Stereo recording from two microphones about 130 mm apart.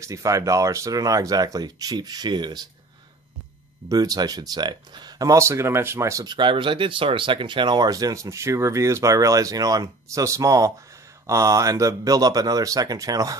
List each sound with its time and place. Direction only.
0.0 s speech: 25° right (ahead or behind)
3.9 s speech: 30° right (ahead or behind)